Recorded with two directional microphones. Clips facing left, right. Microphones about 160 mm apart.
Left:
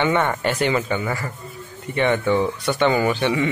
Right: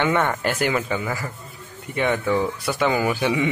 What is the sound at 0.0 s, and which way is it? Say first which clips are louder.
Speech: left 1 dB; centre (ahead or behind).